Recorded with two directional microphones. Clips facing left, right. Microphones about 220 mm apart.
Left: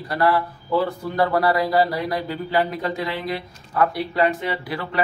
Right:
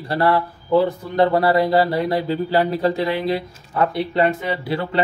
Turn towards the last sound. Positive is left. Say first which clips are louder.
# right 5 dB
turn(degrees=-25)  # may be behind; listen again after turning